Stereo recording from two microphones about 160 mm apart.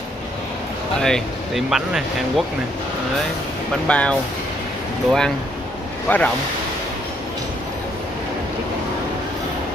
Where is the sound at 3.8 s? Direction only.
10° left (ahead or behind).